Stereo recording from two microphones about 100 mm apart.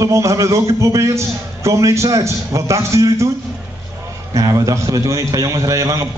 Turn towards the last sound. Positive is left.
turn(degrees=-35)  # may be behind; listen again after turning